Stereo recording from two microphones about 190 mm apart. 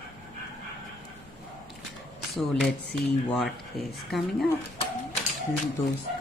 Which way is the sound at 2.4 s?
Centre (ahead or behind).